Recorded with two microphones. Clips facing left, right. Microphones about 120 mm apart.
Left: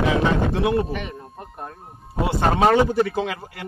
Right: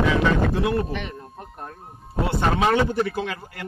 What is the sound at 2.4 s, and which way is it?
Speech, 35° left (ahead or behind).